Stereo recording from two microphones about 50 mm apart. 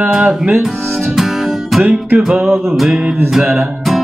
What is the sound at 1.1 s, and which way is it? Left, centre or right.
Music, centre.